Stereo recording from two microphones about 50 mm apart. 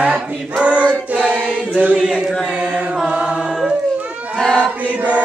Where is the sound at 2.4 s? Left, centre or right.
Right.